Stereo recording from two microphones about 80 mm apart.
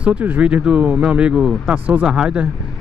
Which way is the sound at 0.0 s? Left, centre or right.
Centre.